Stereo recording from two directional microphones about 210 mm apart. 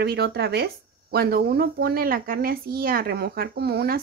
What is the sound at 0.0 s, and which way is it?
Speech, 50° right (ahead or behind).